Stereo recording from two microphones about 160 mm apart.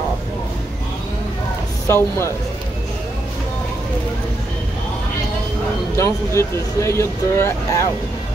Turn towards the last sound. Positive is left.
turn(degrees=15)  # may be behind; listen again after turning